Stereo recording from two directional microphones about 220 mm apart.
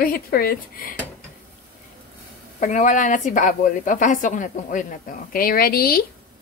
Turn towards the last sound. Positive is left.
turn(degrees=45)  # may be behind; listen again after turning